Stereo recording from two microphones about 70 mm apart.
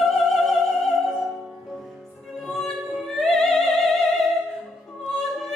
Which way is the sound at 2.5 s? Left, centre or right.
Centre.